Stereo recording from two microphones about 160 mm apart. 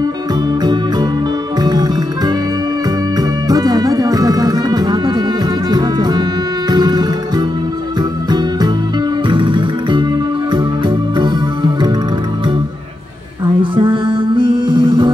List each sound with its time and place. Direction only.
1.6 s music: 25° right (ahead or behind)
13.6 s music: 30° right (ahead or behind)